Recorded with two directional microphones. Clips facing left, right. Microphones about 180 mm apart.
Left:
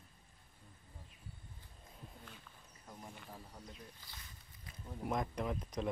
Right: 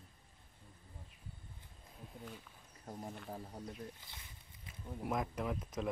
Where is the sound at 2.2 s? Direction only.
10° right (ahead or behind).